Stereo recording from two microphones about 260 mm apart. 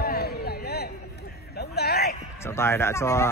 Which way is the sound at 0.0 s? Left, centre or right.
Left.